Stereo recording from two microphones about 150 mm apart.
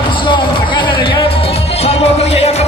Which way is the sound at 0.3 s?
30° left (ahead or behind).